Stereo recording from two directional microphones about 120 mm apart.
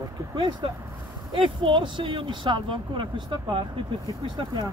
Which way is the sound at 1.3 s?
45° right (ahead or behind).